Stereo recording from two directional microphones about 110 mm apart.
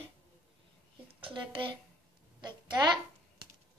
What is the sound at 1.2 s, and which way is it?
Speech, 50° right (ahead or behind).